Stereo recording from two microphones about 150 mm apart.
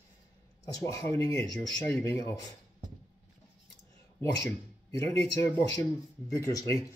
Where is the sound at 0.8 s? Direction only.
20° left (ahead or behind).